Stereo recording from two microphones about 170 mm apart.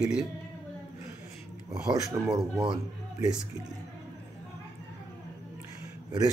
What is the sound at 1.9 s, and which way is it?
Speech, 20° right (ahead or behind).